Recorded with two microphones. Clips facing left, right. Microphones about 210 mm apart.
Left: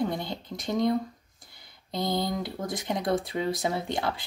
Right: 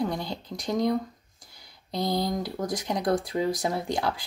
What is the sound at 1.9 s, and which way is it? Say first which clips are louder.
Speech: right 1 dB; 20° left (ahead or behind).